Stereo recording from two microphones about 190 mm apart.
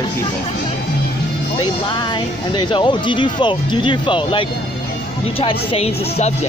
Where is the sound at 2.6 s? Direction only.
25° left (ahead or behind).